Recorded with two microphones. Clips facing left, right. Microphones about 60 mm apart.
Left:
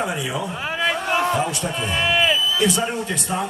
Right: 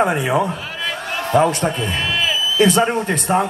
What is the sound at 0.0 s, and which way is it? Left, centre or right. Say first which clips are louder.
A man's voice: right 8 dB; right.